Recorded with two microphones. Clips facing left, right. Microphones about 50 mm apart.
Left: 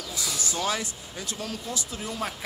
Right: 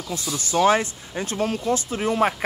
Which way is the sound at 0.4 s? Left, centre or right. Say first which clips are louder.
Right 12 dB; right.